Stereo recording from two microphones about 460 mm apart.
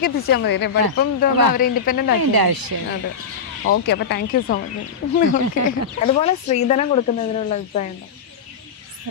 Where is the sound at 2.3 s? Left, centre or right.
Right.